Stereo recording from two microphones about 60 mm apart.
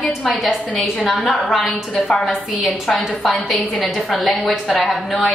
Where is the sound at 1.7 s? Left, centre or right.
Left.